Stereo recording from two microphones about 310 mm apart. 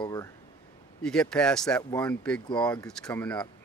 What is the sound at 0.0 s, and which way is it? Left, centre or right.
Speech, centre.